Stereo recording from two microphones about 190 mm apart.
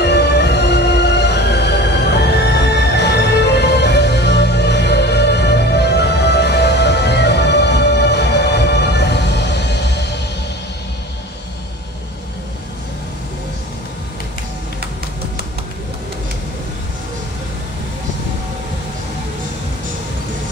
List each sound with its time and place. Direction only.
0.0 s music: 60° left (ahead or behind)